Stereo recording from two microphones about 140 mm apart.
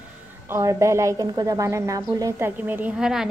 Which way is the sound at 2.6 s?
10° right (ahead or behind).